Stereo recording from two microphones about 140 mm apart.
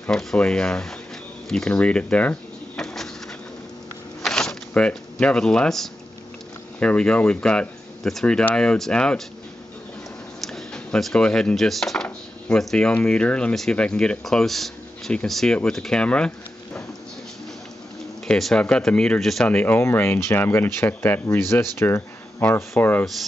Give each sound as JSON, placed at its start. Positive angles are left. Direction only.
{"t": 0.0, "sound": "speech", "side_deg": 5}
{"t": 1.5, "sound": "a sound", "side_deg": 5}
{"t": 4.2, "sound": "a sound", "side_deg": 5}
{"t": 6.8, "sound": "speech", "side_deg": 5}
{"t": 10.4, "sound": "speech", "side_deg": 5}
{"t": 18.2, "sound": "speech", "side_deg": 5}
{"t": 19.5, "sound": "speech", "side_deg": 15}